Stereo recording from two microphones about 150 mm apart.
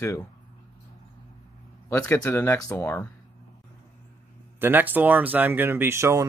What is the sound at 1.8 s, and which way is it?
Speech, 20° left (ahead or behind).